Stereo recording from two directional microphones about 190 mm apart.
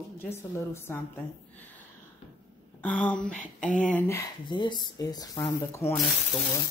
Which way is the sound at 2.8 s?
5° left (ahead or behind).